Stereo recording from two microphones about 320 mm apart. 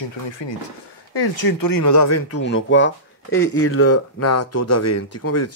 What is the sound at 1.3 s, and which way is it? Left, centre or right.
Speech, left.